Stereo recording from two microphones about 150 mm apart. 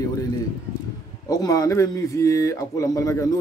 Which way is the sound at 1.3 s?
25° left (ahead or behind).